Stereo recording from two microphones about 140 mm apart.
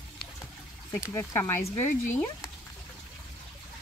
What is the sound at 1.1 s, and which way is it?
Speech, 15° left (ahead or behind).